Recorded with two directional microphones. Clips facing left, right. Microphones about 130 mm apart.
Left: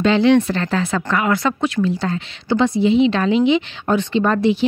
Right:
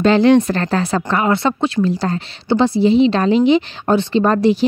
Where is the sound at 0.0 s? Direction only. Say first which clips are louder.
Right 2 dB; 45° right (ahead or behind).